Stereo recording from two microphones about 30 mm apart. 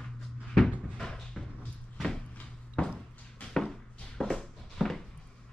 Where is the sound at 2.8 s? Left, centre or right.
Left.